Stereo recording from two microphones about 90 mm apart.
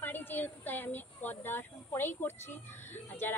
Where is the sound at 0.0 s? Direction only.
20° left (ahead or behind).